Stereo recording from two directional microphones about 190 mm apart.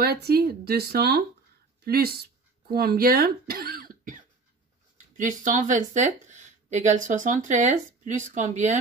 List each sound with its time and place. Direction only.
0.0 s speech: 55° right (ahead or behind); by 8.7 s 40° right (ahead or behind)